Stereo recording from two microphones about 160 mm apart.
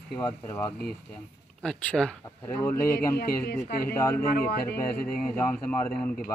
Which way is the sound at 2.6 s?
15° left (ahead or behind).